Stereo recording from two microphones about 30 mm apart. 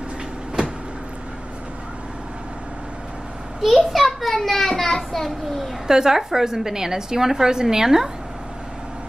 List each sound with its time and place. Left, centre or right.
3.6 s a sound: centre
4.8 s a child's voice: centre
5.9 s a woman's voice: centre